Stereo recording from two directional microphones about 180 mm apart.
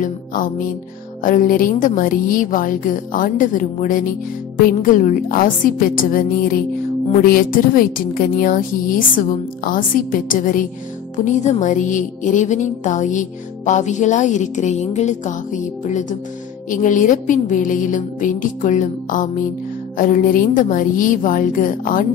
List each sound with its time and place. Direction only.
0.0 s a woman's voice: 45° left (ahead or behind)